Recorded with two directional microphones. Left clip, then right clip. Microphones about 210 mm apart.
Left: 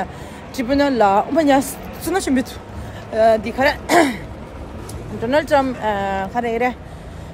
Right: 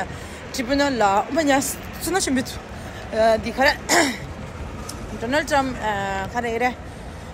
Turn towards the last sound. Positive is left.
turn(degrees=15)  # may be behind; listen again after turning